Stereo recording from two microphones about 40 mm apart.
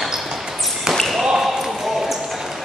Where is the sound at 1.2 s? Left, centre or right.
Centre.